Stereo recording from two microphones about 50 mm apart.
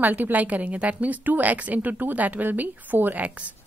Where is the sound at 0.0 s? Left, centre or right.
Right.